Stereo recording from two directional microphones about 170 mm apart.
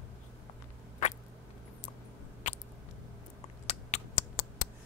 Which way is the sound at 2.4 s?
45° left (ahead or behind).